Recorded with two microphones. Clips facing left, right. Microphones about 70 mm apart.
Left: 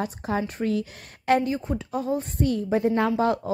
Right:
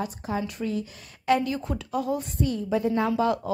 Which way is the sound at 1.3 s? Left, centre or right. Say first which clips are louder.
Left 2 dB; left.